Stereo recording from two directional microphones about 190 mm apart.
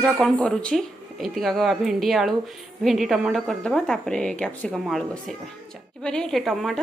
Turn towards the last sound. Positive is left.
turn(degrees=0)  # may be behind; listen again after turning